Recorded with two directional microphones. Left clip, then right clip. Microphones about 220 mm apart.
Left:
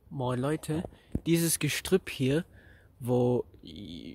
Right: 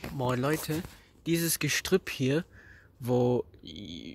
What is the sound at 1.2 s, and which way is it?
Speech, 20° left (ahead or behind).